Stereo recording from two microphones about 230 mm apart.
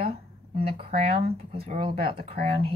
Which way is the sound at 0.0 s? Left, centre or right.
Right.